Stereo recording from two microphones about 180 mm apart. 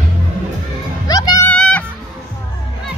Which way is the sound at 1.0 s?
20° left (ahead or behind).